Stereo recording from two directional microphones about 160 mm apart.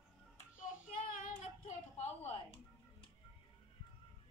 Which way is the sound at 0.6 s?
55° left (ahead or behind).